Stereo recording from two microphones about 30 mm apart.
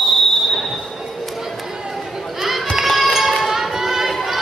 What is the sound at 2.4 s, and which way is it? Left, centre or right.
Run, centre.